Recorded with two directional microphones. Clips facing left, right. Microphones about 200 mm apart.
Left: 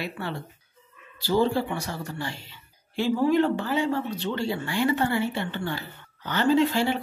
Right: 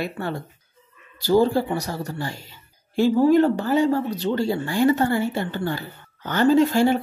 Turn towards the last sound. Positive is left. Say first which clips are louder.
# right 5 dB
turn(degrees=-45)  # may be behind; listen again after turning